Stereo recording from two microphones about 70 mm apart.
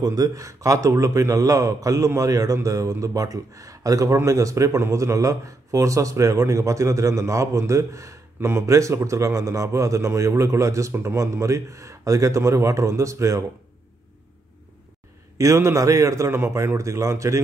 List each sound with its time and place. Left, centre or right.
0.0 s a man's voice: right
15.3 s a man's voice: right